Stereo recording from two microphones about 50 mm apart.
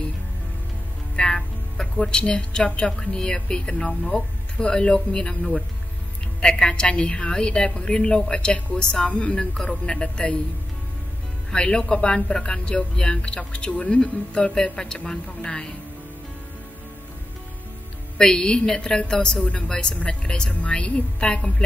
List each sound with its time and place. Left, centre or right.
1.1 s speech: centre
6.7 s a woman's voice: left
11.5 s a woman's voice: centre
18.1 s a woman's voice: centre